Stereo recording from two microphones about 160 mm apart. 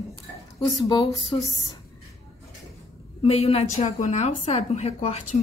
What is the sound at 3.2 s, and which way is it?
A woman's voice, 40° left (ahead or behind).